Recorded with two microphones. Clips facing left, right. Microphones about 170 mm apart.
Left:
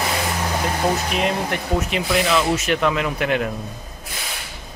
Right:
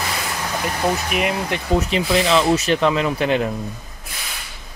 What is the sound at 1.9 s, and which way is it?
Speech, 30° right (ahead or behind).